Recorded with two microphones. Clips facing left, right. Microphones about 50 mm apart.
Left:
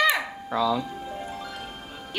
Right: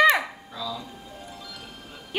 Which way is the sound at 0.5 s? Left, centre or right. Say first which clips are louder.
Left 11 dB; left.